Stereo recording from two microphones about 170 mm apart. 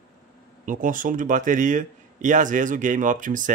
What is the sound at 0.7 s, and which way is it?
Speech, 50° right (ahead or behind).